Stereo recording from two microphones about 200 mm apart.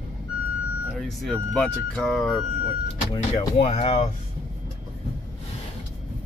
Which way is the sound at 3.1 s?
25° left (ahead or behind).